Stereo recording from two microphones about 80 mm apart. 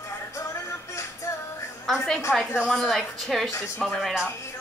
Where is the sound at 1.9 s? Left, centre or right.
Centre.